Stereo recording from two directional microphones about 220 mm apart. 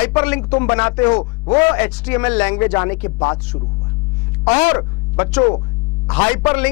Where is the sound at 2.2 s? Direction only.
10° left (ahead or behind).